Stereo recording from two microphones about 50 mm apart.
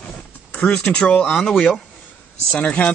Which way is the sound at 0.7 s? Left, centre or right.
Left.